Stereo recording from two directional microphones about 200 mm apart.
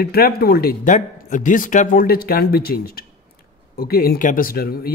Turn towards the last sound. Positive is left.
turn(degrees=50)  # may be behind; listen again after turning